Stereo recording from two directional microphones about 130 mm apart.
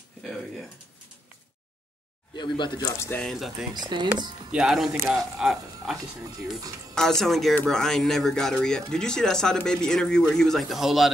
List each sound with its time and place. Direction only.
0.2 s speech: centre (ahead or behind)
2.3 s speech: 35° left (ahead or behind)
3.2 s speech: centre (ahead or behind)
3.9 s speech: 35° right (ahead or behind)
4.5 s speech: 5° right (ahead or behind)
7.0 s speech: 5° left (ahead or behind)